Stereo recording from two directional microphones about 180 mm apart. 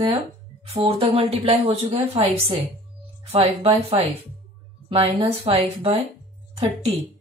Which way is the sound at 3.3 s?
35° right (ahead or behind).